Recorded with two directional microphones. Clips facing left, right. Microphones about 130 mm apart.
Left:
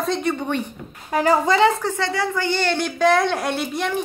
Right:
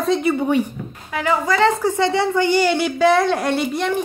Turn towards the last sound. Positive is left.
turn(degrees=0)  # may be behind; listen again after turning